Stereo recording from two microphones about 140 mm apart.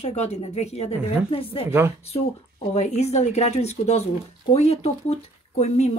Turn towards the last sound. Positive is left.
turn(degrees=50)  # may be behind; listen again after turning